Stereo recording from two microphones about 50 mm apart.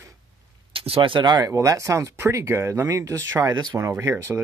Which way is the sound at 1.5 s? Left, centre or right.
Right.